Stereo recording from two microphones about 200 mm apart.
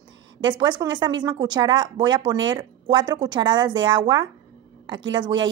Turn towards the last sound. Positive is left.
turn(degrees=-20)  # may be behind; listen again after turning